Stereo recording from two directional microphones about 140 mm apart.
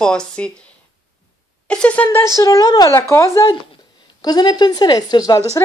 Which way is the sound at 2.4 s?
25° left (ahead or behind).